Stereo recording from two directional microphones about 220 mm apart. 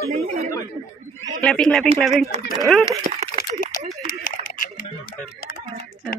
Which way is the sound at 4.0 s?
40° left (ahead or behind).